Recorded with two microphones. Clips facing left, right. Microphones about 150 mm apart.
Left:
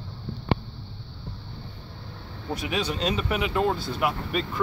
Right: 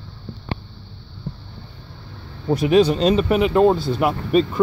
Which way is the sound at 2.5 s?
40° right (ahead or behind).